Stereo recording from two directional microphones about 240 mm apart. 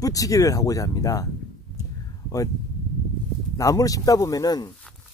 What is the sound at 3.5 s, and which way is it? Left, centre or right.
Speech, centre.